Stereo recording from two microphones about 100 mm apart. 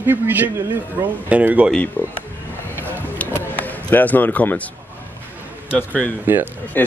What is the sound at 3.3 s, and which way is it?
Basketball bounce, 20° left (ahead or behind).